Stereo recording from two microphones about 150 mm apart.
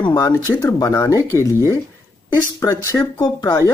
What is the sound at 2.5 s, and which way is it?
Speech, 20° left (ahead or behind).